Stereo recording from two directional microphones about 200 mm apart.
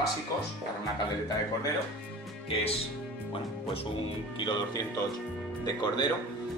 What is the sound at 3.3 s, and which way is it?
Speech, 30° left (ahead or behind).